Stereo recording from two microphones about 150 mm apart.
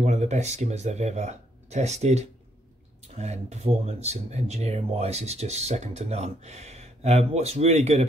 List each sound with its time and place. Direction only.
0.0 s speech: 50° right (ahead or behind)